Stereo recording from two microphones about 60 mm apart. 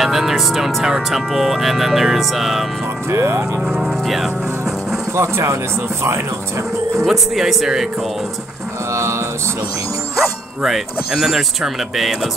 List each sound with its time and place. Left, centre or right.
0.0 s speech: centre
3.1 s speech: right
3.6 s speech: centre
5.1 s speech: right
7.1 s speech: centre
10.1 s speech: centre